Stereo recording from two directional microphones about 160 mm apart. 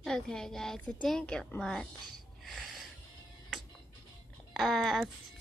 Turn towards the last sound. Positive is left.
turn(degrees=0)  # may be behind; listen again after turning